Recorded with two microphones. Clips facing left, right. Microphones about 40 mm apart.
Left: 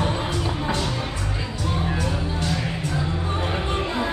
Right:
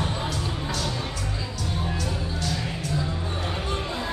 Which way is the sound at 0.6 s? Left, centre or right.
Left.